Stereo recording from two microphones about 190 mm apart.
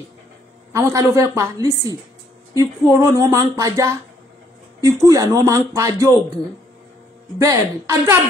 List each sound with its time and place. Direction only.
0.7 s speech: 15° right (ahead or behind)
7.3 s speech: 15° right (ahead or behind)